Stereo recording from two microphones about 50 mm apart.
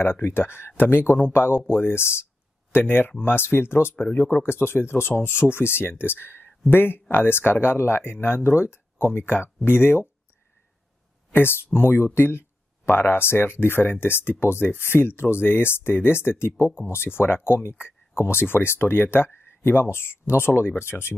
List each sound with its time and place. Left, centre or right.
0.0 s speech: left
2.7 s speech: left
3.9 s speech: left
8.5 s speech: left
11.3 s speech: left